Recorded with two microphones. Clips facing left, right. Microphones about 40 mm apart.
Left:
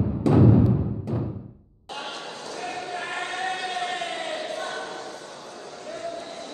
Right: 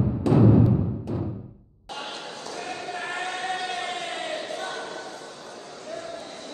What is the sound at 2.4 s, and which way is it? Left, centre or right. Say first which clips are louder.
Basketball bounce: left 1 dB; left.